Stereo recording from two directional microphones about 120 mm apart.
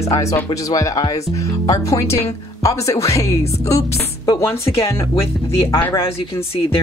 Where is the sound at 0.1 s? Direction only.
25° left (ahead or behind).